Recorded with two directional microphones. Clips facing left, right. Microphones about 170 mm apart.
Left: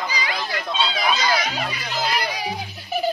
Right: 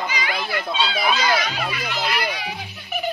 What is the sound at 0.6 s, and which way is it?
Speech, 10° right (ahead or behind).